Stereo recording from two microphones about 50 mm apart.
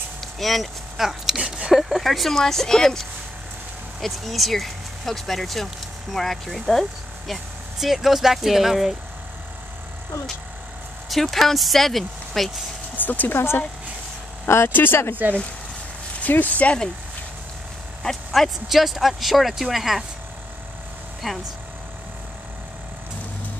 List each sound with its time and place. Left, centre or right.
0.2 s a sound: centre
1.8 s speech: centre
11.1 s speech: centre
12.9 s speech: left
13.3 s speech: left
14.7 s speech: left
16.2 s speech: left
18.0 s speech: centre
21.2 s speech: centre